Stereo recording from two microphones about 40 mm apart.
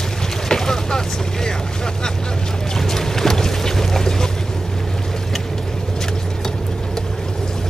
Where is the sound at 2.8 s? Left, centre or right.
Centre.